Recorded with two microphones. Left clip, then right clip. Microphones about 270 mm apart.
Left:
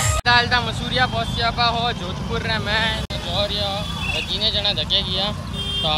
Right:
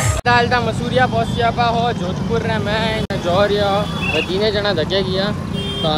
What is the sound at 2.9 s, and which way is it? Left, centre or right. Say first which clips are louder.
Speech: right 6 dB; left.